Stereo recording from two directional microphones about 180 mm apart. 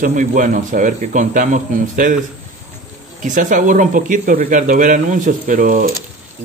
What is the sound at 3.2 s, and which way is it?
Speech, 45° right (ahead or behind).